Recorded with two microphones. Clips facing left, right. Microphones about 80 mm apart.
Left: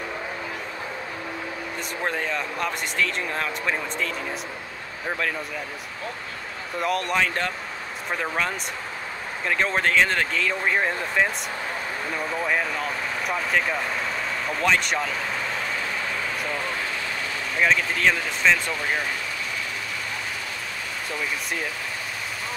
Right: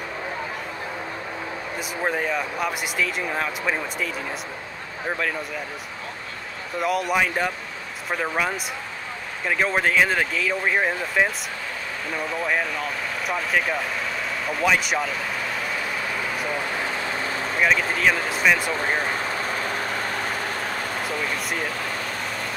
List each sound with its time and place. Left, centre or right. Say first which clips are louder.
2.0 s speech: right 3 dB; centre
6.8 s speech: right 2 dB; centre
16.4 s vehicle: right 2 dB; centre
17.6 s speech: even; centre
18.7 s vehicle: right 3 dB; right